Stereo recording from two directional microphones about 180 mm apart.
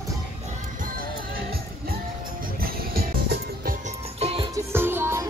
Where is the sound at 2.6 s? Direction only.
55° right (ahead or behind).